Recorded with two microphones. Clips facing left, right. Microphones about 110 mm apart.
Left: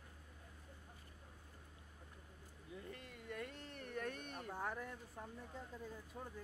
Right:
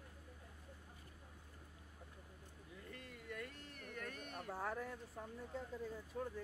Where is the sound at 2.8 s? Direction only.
25° left (ahead or behind).